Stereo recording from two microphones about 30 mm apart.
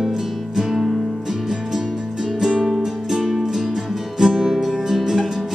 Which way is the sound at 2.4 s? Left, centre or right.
Centre.